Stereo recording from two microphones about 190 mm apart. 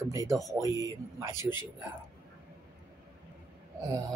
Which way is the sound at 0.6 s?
15° right (ahead or behind).